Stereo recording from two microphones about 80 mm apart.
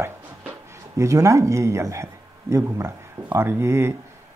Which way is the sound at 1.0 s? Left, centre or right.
Right.